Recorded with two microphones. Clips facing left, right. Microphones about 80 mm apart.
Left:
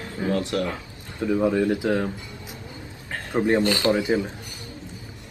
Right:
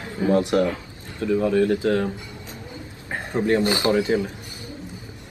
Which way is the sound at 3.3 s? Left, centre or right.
Left.